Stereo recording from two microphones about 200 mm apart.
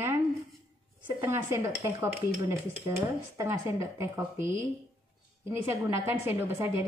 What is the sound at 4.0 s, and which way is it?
Speech, 15° right (ahead or behind).